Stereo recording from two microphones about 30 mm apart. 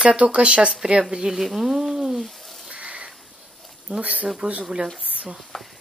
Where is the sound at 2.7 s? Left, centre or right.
Right.